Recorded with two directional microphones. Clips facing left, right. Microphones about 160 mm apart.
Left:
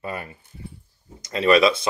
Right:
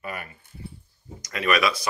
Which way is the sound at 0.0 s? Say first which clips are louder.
Left 4 dB; 25° left (ahead or behind).